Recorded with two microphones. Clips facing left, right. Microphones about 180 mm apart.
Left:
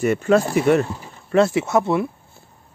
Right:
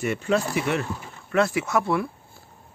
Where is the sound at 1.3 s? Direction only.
25° left (ahead or behind).